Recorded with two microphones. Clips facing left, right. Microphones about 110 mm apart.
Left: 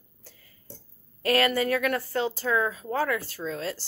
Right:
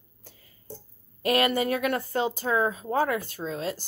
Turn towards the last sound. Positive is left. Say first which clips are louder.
# right 1 dB
turn(degrees=-20)  # may be behind; listen again after turning